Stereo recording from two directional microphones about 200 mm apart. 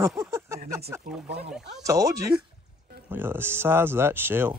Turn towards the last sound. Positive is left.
turn(degrees=-10)  # may be behind; listen again after turning